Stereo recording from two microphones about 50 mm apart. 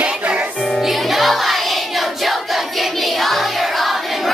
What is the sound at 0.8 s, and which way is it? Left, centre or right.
Music, centre.